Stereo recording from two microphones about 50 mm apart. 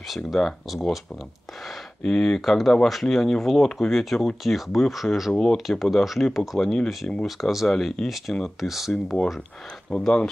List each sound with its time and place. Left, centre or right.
0.1 s speech: centre
2.0 s speech: centre
5.3 s speech: centre
7.6 s speech: centre
8.9 s speech: centre